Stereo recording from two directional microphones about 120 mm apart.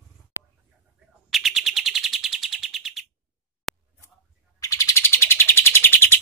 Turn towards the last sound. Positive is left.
turn(degrees=20)  # may be behind; listen again after turning